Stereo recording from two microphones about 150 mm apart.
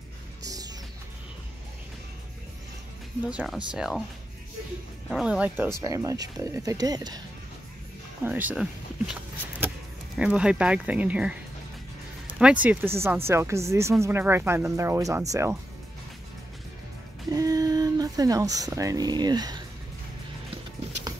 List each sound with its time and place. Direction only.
0.4 s music: 25° right (ahead or behind)
3.3 s speech: 5° right (ahead or behind)
5.1 s speech: 5° right (ahead or behind); by 7.2 s 25° right (ahead or behind)
8.2 s a sound: 10° right (ahead or behind)
10.1 s speech: 5° right (ahead or behind)
17.3 s a sound: 25° right (ahead or behind)